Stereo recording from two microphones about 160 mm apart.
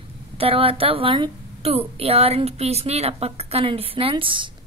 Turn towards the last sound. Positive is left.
turn(degrees=-30)  # may be behind; listen again after turning